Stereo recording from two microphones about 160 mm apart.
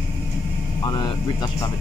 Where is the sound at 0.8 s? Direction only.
25° left (ahead or behind).